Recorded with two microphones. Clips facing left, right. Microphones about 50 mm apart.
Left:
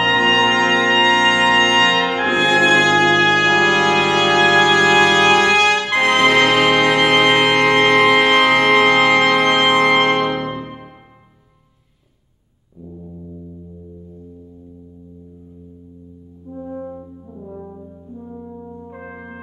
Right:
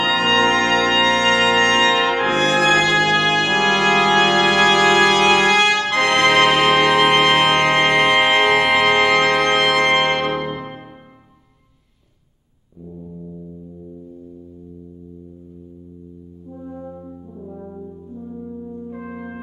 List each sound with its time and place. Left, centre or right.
0.6 s brass instrument: centre
1.2 s organ: centre
1.8 s brass instrument: centre
2.7 s brass instrument: centre
3.1 s music: centre
5.8 s music: centre
6.0 s music: centre
16.4 s french horn: left
18.1 s brass instrument: centre